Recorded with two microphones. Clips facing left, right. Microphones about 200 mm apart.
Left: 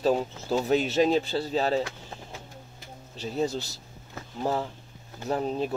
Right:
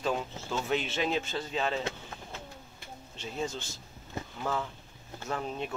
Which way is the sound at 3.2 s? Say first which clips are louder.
Left 7 dB; 35° left (ahead or behind).